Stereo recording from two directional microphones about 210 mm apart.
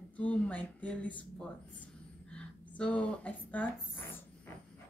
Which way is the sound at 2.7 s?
5° left (ahead or behind).